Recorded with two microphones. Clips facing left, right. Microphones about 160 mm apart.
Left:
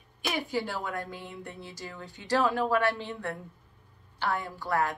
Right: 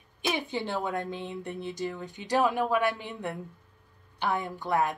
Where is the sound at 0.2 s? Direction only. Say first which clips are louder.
Even; 20° right (ahead or behind).